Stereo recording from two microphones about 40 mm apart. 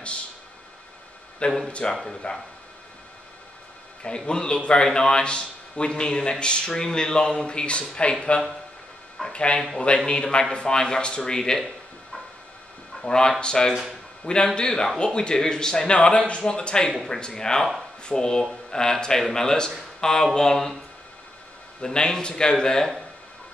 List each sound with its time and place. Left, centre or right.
1.4 s a man's voice: left
4.3 s a man's voice: left
13.0 s a man's voice: centre
21.8 s a man's voice: centre